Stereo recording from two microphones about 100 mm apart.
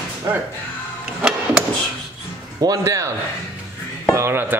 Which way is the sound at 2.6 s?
35° right (ahead or behind).